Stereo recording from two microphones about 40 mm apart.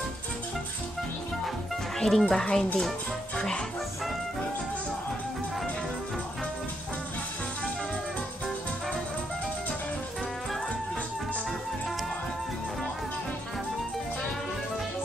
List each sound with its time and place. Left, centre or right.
2.0 s speech: centre